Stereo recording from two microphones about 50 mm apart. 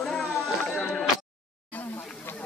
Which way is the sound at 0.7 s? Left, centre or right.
Left.